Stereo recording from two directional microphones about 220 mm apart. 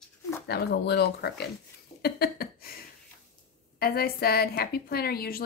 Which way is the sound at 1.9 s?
45° left (ahead or behind).